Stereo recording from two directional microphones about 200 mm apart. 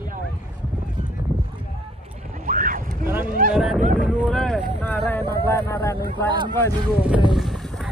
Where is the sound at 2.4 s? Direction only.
40° right (ahead or behind).